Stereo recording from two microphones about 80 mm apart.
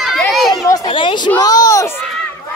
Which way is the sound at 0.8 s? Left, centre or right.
Left.